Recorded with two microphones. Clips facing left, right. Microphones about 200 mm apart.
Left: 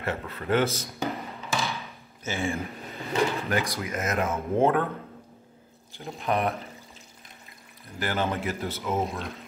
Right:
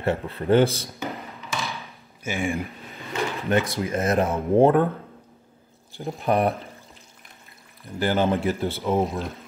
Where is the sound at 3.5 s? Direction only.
25° right (ahead or behind).